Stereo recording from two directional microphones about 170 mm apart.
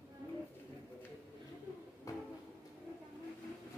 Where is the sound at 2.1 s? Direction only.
20° left (ahead or behind).